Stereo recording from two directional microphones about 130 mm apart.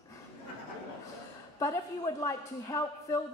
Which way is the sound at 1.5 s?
25° left (ahead or behind).